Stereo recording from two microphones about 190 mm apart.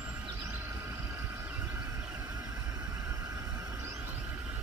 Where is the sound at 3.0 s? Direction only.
20° right (ahead or behind).